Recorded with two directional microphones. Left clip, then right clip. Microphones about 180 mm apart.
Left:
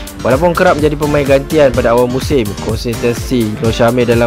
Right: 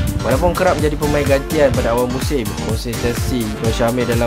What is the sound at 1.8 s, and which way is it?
Speech, 35° left (ahead or behind).